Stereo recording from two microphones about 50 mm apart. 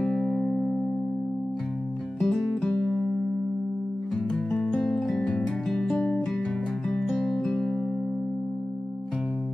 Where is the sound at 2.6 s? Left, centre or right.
Centre.